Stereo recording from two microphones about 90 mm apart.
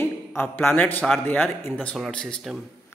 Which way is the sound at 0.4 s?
25° left (ahead or behind).